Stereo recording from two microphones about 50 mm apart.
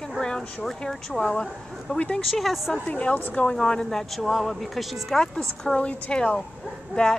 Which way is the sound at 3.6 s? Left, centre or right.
Centre.